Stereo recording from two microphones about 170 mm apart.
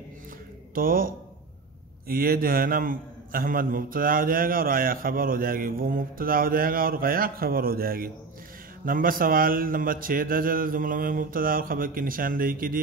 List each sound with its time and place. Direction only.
0.7 s a man's voice: 55° right (ahead or behind)